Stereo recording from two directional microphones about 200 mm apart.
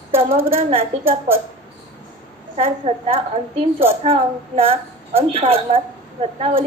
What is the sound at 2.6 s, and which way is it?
A woman's voice, 30° right (ahead or behind).